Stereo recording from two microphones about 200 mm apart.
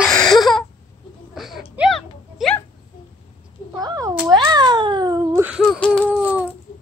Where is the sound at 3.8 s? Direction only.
20° right (ahead or behind).